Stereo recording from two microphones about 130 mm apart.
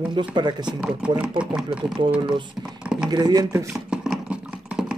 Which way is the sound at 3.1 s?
30° right (ahead or behind).